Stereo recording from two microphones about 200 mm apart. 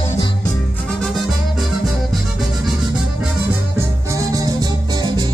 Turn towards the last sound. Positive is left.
turn(degrees=-15)  # may be behind; listen again after turning